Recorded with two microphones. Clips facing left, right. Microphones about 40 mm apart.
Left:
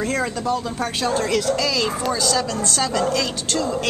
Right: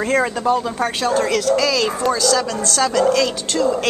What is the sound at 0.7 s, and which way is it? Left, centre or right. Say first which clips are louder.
Speech: right 3 dB; centre.